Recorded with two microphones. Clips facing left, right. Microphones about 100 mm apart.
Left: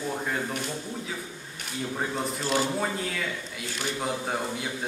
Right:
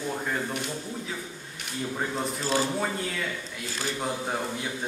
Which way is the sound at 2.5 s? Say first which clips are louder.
Even; centre (ahead or behind).